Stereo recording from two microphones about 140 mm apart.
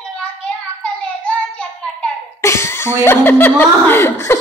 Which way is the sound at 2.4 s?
20° left (ahead or behind).